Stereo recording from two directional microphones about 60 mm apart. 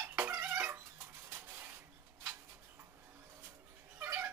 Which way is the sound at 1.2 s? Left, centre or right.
Right.